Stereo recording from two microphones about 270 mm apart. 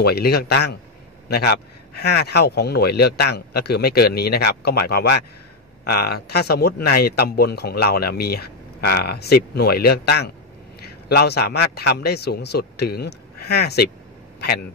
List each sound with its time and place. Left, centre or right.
0.0 s a man's voice: left